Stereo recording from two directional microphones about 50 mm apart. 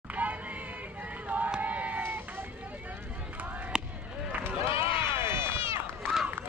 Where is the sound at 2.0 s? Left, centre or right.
Right.